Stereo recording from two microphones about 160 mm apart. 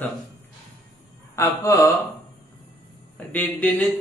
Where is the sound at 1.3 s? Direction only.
20° left (ahead or behind).